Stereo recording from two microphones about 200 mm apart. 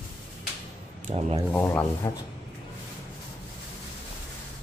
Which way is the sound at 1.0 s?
30° right (ahead or behind).